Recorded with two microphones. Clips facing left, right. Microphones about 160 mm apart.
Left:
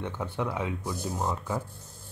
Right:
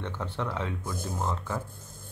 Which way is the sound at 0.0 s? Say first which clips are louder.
Left 2 dB; 10° left (ahead or behind).